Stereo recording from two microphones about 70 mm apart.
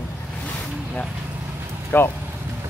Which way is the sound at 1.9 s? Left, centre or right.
Left.